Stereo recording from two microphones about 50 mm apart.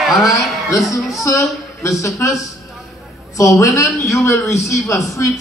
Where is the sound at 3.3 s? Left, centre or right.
Left.